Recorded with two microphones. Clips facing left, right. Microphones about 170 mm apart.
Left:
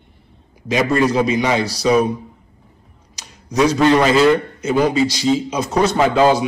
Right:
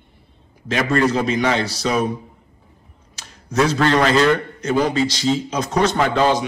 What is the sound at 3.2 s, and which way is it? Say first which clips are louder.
A man's voice: left 2 dB; 15° left (ahead or behind).